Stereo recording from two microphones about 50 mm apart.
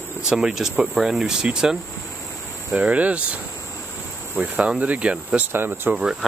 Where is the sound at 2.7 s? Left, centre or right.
Right.